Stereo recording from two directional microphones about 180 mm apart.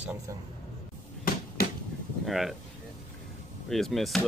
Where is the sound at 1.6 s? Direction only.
60° left (ahead or behind).